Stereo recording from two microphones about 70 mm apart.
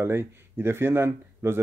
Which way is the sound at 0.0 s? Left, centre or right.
Right.